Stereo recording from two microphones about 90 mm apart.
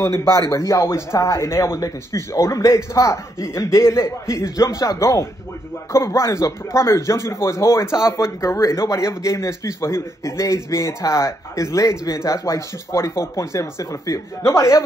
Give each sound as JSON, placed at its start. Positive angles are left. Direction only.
{"t": 0.0, "sound": "speech", "side_deg": 30}